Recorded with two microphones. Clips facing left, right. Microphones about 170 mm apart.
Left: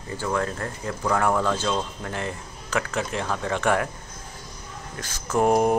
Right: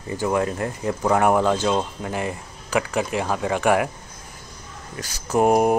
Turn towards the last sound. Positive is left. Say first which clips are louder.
# right 2 dB
turn(degrees=-10)  # may be behind; listen again after turning